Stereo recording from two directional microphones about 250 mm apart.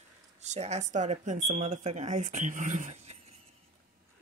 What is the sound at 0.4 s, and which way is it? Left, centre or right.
Speech, right.